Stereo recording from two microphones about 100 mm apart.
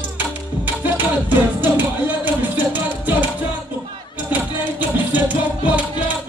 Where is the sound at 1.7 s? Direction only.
15° right (ahead or behind).